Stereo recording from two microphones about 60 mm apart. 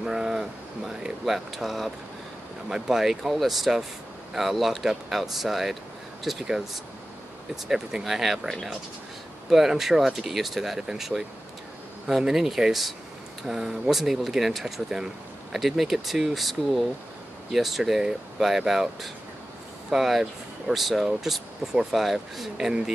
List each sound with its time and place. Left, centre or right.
0.0 s speech: centre